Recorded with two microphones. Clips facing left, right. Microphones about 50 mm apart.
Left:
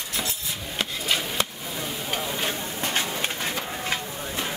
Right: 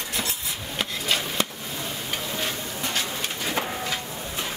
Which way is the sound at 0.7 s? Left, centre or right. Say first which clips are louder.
Even; centre.